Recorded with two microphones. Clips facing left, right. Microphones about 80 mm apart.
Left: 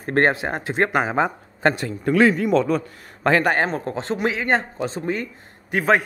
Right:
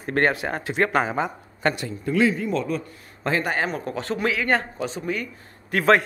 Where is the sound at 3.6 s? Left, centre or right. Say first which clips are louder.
Left 2 dB; left.